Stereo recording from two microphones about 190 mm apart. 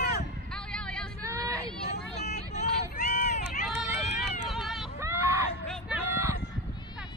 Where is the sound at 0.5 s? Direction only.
5° left (ahead or behind).